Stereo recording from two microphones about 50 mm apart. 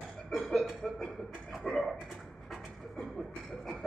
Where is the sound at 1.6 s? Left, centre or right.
Centre.